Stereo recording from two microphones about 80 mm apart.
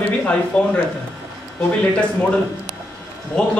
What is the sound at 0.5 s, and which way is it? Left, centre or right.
Speech, centre.